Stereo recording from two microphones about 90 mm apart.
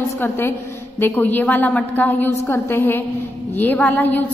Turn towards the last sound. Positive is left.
turn(degrees=20)  # may be behind; listen again after turning